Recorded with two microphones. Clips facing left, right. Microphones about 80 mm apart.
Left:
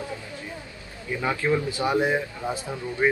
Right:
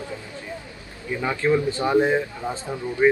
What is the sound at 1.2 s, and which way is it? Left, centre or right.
Speech, centre.